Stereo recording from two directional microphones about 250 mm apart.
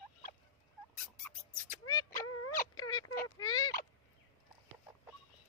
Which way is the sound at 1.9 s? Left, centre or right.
Centre.